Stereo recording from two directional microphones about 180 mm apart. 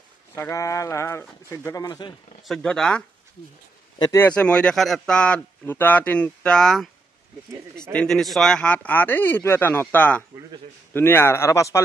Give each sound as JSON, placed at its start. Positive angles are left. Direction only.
{"t": 0.4, "sound": "speech", "side_deg": 15}
{"t": 2.4, "sound": "speech", "side_deg": 5}
{"t": 4.0, "sound": "speech", "side_deg": 15}
{"t": 4.4, "sound": "speech", "side_deg": 5}
{"t": 7.9, "sound": "speech", "side_deg": 5}